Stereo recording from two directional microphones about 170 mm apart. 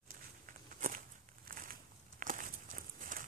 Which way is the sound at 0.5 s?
50° right (ahead or behind).